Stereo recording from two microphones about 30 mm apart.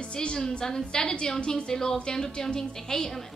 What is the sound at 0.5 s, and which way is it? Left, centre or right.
A woman's voice, left.